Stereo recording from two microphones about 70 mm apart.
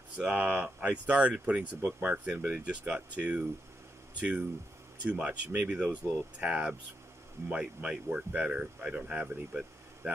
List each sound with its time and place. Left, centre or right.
0.2 s speech: centre